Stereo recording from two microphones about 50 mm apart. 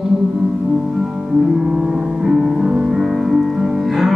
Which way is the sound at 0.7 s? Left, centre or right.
Centre.